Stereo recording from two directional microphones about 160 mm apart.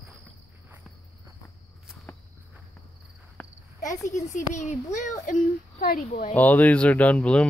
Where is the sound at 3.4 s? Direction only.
5° left (ahead or behind).